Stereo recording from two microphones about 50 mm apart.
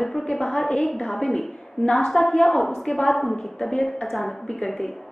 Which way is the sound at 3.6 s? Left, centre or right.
Centre.